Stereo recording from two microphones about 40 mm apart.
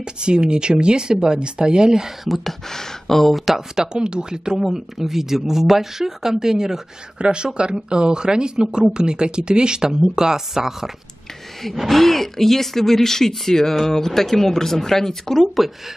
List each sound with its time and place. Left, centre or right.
0.0 s speech: right
2.2 s speech: centre
2.7 s speech: centre
3.5 s speech: centre
4.6 s speech: centre
7.2 s speech: right
11.7 s speech: centre